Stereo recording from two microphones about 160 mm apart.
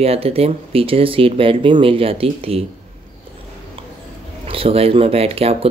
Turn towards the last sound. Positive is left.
turn(degrees=-40)  # may be behind; listen again after turning